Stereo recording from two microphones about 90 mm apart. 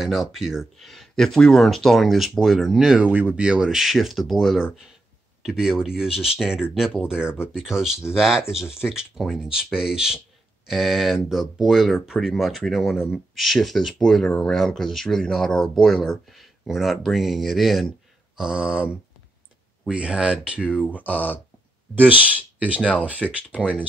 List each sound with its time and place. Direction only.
0.0 s speech: 5° right (ahead or behind)
3.1 s speech: 20° right (ahead or behind)
20.9 s speech: 20° left (ahead or behind)
21.9 s speech: 20° right (ahead or behind)